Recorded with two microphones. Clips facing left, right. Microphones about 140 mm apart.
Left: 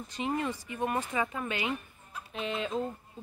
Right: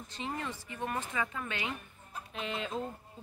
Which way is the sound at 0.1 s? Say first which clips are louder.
Left 6 dB; 15° left (ahead or behind).